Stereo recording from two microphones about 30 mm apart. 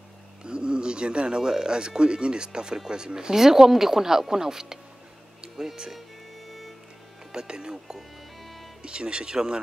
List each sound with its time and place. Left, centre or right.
0.4 s speech: right
3.3 s speech: centre
5.9 s music: centre
7.3 s speech: right
8.4 s music: centre
8.8 s speech: right